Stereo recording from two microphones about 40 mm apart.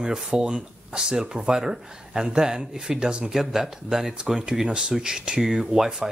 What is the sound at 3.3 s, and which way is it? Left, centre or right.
Speech, centre.